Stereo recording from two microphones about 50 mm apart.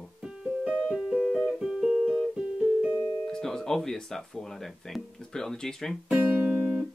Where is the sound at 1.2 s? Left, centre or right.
Centre.